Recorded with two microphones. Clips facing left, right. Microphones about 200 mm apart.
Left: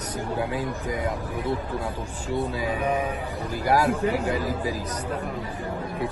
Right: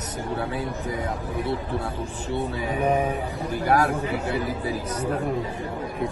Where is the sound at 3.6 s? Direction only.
10° left (ahead or behind).